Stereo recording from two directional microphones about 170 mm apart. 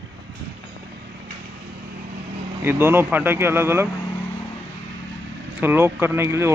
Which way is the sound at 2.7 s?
15° right (ahead or behind).